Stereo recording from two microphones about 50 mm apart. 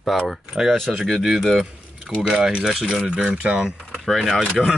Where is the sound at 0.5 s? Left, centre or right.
Centre.